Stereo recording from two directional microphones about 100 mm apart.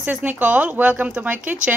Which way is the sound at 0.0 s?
15° right (ahead or behind).